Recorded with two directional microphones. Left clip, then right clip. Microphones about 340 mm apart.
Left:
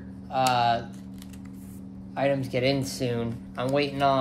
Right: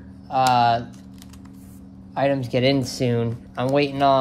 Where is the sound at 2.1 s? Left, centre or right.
Right.